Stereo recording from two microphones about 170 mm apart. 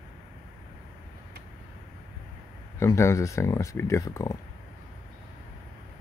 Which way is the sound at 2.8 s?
15° left (ahead or behind).